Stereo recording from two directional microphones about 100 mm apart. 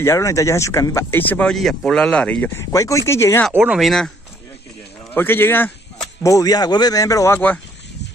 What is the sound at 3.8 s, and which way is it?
Speech, 5° left (ahead or behind).